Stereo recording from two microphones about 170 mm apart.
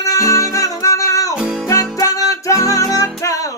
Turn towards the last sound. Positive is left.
turn(degrees=20)  # may be behind; listen again after turning